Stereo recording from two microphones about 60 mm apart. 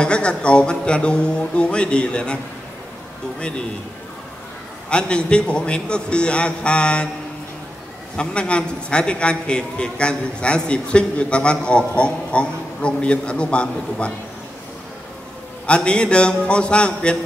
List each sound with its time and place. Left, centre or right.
0.0 s a man's voice: centre
3.3 s a man's voice: centre
4.8 s a man's voice: centre
8.2 s a man's voice: centre
15.6 s a man's voice: centre